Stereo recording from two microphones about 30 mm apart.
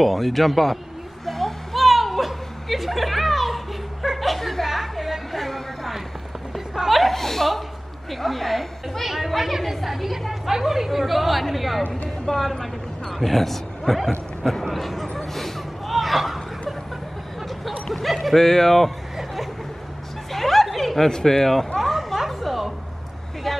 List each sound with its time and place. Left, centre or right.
0.0 s speech: centre
1.2 s a sound: centre
6.5 s chuckle: centre
8.1 s speech: centre
12.3 s speech: centre
15.3 s a sound: centre
18.4 s speech: centre
20.3 s snicker: centre
21.1 s speech: left
21.7 s a sound: centre